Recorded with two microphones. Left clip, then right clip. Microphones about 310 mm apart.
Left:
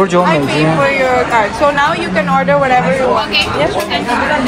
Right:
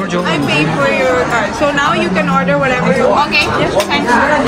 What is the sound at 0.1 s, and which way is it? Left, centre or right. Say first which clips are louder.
Speech: left 5 dB; centre.